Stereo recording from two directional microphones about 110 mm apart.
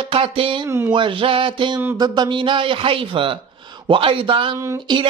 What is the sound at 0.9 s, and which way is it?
Speech, 50° right (ahead or behind).